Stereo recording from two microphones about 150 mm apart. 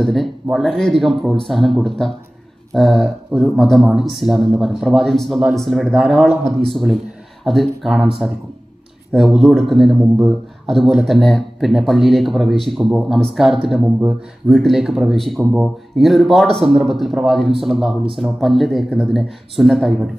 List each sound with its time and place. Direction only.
0.0 s speech: centre (ahead or behind)
9.1 s speech: centre (ahead or behind)